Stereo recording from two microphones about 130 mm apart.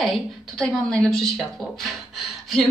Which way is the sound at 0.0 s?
Centre (ahead or behind).